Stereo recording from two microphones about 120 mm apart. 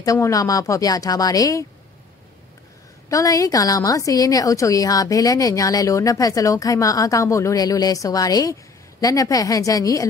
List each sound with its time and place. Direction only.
0.0 s a woman's voice: 30° left (ahead or behind)
3.1 s a woman's voice: 30° left (ahead or behind)